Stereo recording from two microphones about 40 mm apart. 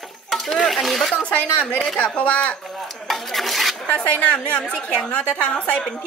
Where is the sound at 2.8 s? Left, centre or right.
Centre.